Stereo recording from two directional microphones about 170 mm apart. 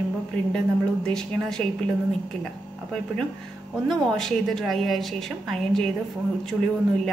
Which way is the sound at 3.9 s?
Centre (ahead or behind).